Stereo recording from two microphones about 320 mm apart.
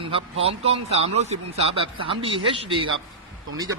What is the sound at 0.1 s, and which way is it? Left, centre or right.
A man's voice, centre.